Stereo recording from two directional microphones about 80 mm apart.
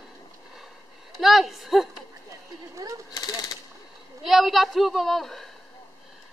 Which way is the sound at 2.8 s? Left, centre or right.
Right.